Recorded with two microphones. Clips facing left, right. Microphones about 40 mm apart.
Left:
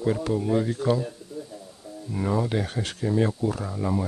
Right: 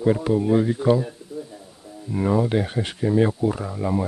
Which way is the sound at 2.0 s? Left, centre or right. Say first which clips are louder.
Right 5 dB; centre.